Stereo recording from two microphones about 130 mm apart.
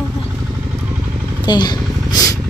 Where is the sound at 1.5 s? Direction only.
35° left (ahead or behind).